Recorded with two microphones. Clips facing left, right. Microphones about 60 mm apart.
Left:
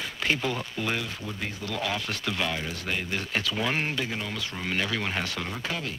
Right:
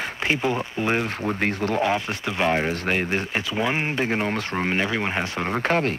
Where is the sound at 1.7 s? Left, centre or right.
Right.